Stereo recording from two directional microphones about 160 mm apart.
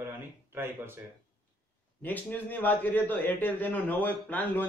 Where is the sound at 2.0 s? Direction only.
10° left (ahead or behind).